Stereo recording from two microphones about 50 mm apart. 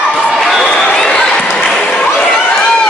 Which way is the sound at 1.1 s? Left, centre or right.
Left.